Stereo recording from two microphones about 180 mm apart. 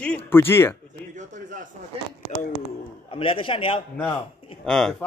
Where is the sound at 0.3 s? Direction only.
15° left (ahead or behind).